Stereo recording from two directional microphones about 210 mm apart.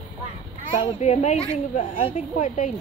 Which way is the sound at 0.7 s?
30° left (ahead or behind).